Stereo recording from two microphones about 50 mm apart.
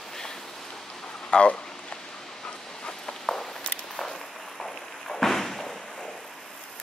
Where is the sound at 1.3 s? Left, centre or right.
Left.